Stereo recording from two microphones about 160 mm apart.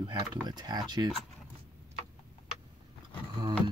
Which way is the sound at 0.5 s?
25° right (ahead or behind).